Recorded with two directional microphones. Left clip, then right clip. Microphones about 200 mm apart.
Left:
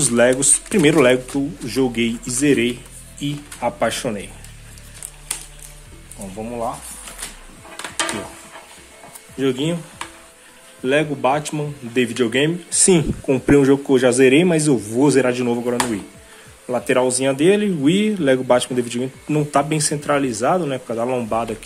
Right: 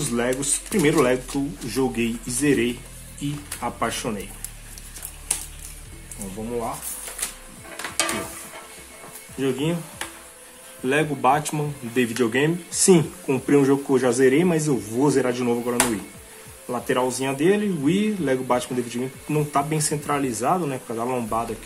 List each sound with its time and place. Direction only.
0.1 s speech: 35° left (ahead or behind)
1.3 s speech: 15° left (ahead or behind)
9.4 s speech: 20° left (ahead or behind)
10.8 s speech: 10° left (ahead or behind); by 21.5 s 25° left (ahead or behind)